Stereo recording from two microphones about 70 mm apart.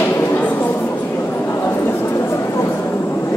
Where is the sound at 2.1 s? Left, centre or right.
Left.